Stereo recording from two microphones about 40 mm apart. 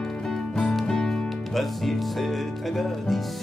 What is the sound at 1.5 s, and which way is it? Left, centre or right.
Music, centre.